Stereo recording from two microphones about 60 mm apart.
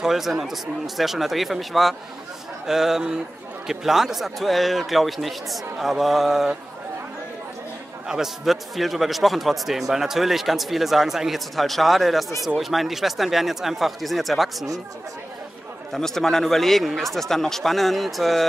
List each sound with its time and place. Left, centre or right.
0.0 s a man's voice: centre
8.1 s a man's voice: centre
15.9 s a man's voice: centre